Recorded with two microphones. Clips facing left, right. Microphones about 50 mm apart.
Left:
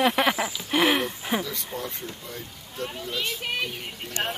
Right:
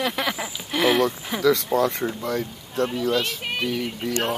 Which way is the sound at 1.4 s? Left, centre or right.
Right.